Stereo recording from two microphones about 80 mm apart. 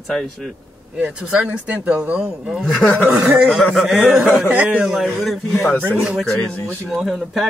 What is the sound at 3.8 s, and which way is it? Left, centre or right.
Speech, right.